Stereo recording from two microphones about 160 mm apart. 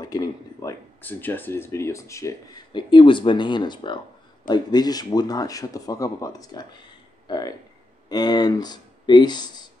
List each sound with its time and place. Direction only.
0.0 s speech: 20° left (ahead or behind)